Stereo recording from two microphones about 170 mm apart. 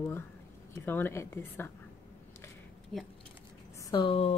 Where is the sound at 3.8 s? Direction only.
25° left (ahead or behind).